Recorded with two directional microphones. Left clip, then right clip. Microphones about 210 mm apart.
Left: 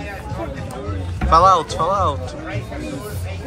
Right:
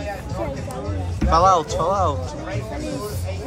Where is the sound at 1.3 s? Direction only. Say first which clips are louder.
Left 3 dB; 15° right (ahead or behind).